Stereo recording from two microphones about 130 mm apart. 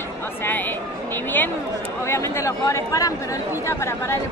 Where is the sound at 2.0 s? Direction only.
20° left (ahead or behind).